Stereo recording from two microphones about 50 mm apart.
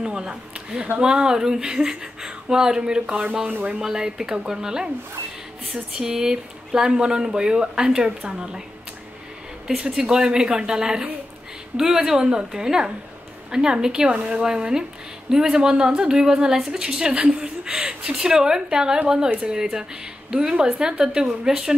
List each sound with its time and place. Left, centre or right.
0.0 s a woman's voice: centre
5.9 s a woman's voice: centre
9.8 s a woman's voice: centre